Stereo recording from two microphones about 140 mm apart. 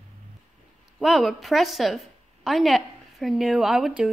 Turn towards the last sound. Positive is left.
turn(degrees=-5)  # may be behind; listen again after turning